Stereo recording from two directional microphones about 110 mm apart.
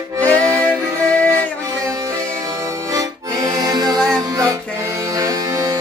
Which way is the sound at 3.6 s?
35° right (ahead or behind).